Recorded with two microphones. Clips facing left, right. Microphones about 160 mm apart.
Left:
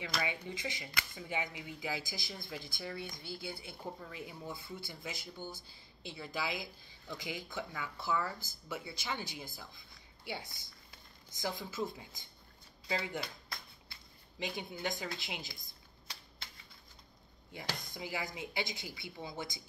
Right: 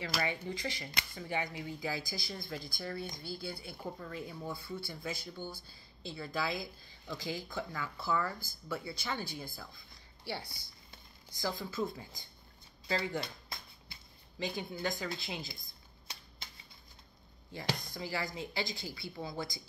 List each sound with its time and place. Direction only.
0.2 s a woman's voice: 15° left (ahead or behind)
13.2 s a sound: 25° right (ahead or behind)
14.4 s speech: 20° left (ahead or behind)
17.9 s a woman's voice: 15° left (ahead or behind)